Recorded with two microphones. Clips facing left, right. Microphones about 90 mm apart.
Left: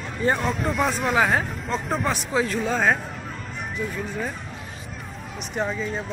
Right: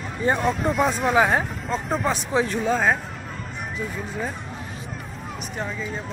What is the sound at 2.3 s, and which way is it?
Speech, 25° right (ahead or behind).